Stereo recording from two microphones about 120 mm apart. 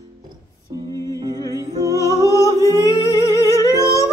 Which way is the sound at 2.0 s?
25° left (ahead or behind).